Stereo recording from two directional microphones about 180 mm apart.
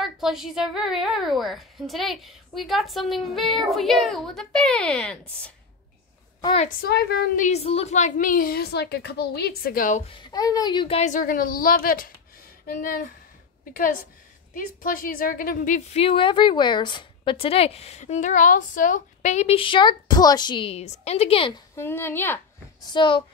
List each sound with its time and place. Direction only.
0.0 s a woman's voice: centre (ahead or behind)
6.4 s a woman's voice: 35° left (ahead or behind)
6.8 s a woman's voice: 60° left (ahead or behind)
7.4 s a woman's voice: 35° left (ahead or behind)
10.0 s a woman's voice: 25° left (ahead or behind); by 13.1 s 50° left (ahead or behind)
14.5 s a woman's voice: 50° left (ahead or behind); by 21.5 s 30° left (ahead or behind)
21.7 s a woman's voice: 15° left (ahead or behind)
22.8 s speech: 25° left (ahead or behind)